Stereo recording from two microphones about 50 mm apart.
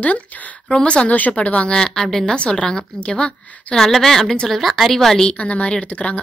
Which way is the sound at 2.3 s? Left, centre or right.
Centre.